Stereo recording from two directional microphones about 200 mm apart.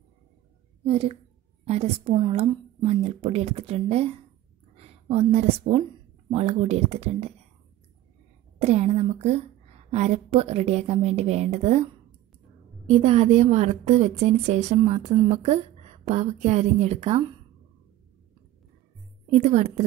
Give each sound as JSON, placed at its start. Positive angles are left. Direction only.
{"t": 0.8, "sound": "a woman's voice", "side_deg": -30}
{"t": 4.7, "sound": "a sound", "side_deg": -30}
{"t": 6.3, "sound": "a woman's voice", "side_deg": -30}
{"t": 8.5, "sound": "a woman's voice", "side_deg": -35}
{"t": 19.3, "sound": "a woman's voice", "side_deg": -35}